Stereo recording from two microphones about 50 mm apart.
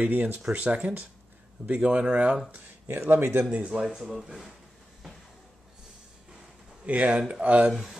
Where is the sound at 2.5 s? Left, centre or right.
Right.